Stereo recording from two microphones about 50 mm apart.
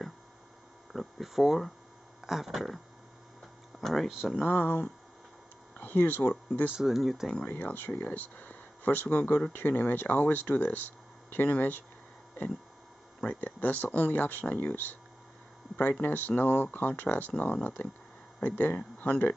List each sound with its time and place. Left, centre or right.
0.9 s speech: centre
3.8 s speech: centre
4.1 s speech: centre
4.5 s speech: left
6.7 s speech: centre
7.4 s speech: left
13.2 s speech: left